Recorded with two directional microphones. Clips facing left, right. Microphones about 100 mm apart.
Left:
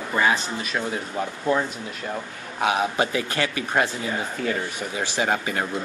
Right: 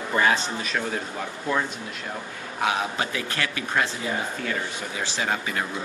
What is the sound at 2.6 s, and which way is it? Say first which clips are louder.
Speech: left 4 dB; 25° left (ahead or behind).